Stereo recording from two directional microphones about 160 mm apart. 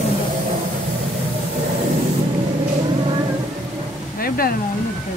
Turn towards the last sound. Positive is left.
turn(degrees=65)  # may be behind; listen again after turning